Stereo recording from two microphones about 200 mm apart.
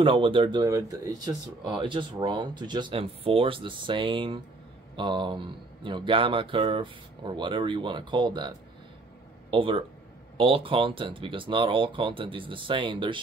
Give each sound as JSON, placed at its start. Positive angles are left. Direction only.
{"t": 0.0, "sound": "speech", "side_deg": -25}
{"t": 9.5, "sound": "speech", "side_deg": -25}